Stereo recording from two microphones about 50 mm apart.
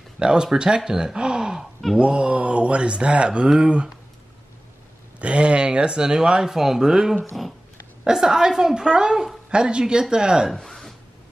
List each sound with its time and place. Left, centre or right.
0.2 s speech: centre
5.2 s speech: right
10.5 s a sound: centre